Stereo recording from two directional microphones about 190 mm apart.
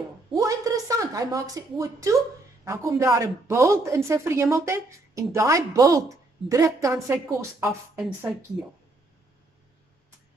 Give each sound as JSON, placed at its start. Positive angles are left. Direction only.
{"t": 0.3, "sound": "a sound", "side_deg": -20}
{"t": 2.6, "sound": "a woman's voice", "side_deg": -15}
{"t": 8.0, "sound": "speech", "side_deg": -5}